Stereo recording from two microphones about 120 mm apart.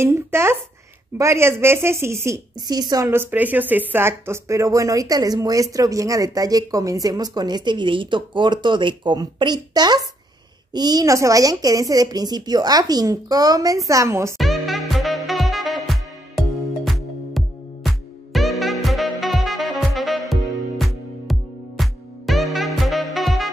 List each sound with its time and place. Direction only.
0.0 s a woman's voice: 20° right (ahead or behind)
3.1 s speech: 15° right (ahead or behind)
14.4 s music: centre (ahead or behind)